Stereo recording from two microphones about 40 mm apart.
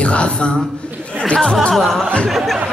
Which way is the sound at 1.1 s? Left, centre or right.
Left.